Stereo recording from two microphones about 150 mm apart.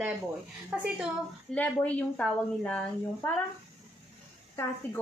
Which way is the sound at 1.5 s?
10° left (ahead or behind).